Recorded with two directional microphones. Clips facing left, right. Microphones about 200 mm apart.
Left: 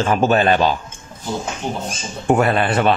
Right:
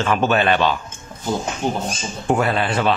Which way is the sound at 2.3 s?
55° left (ahead or behind).